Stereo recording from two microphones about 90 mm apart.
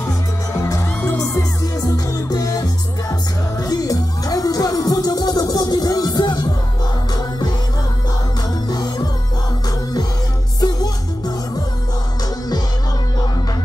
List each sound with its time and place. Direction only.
0.6 s music: 40° left (ahead or behind)
8.6 s music: 50° left (ahead or behind)
10.6 s music: 45° left (ahead or behind)